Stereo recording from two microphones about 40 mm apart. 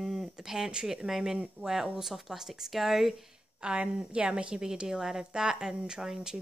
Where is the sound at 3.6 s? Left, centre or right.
Right.